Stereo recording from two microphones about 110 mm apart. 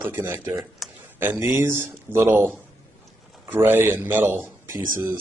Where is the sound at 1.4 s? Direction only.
25° right (ahead or behind).